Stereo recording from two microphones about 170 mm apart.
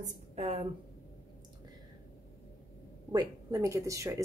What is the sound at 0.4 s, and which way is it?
Speech, 35° right (ahead or behind).